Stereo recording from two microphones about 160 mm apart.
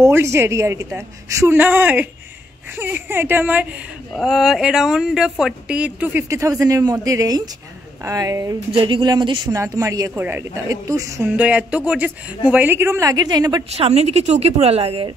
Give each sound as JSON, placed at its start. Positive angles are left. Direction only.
{"t": 0.0, "sound": "a woman's voice", "side_deg": -15}
{"t": 9.6, "sound": "a woman's voice", "side_deg": -20}
{"t": 11.3, "sound": "speech", "side_deg": -10}
{"t": 13.7, "sound": "a woman's voice", "side_deg": -40}